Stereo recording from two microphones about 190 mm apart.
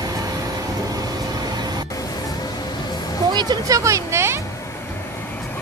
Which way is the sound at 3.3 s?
20° right (ahead or behind).